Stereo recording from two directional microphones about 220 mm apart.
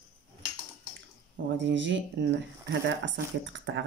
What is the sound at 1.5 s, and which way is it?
Speech, 55° right (ahead or behind).